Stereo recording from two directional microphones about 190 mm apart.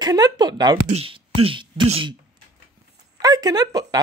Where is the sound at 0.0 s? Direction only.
20° right (ahead or behind).